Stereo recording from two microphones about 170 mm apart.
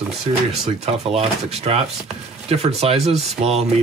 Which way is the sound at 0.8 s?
35° right (ahead or behind).